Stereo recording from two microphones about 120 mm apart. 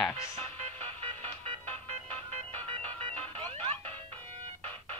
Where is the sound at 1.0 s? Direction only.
55° right (ahead or behind).